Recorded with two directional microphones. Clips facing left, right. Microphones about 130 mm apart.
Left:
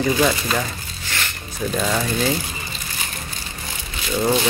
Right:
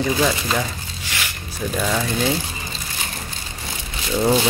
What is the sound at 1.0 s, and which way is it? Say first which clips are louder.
Zipper: left 1 dB; 10° right (ahead or behind).